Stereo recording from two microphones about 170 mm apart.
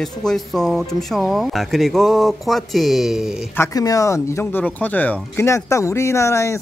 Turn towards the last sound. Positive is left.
turn(degrees=15)  # may be behind; listen again after turning